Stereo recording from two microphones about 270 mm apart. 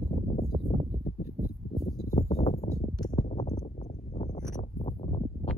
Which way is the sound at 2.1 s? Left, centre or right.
Centre.